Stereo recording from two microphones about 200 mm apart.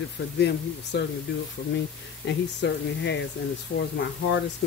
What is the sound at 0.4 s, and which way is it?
Speech, 55° left (ahead or behind).